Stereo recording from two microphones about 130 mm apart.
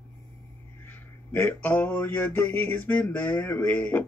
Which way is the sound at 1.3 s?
15° left (ahead or behind).